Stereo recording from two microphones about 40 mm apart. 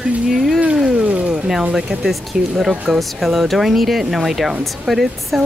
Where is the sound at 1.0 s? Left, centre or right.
Right.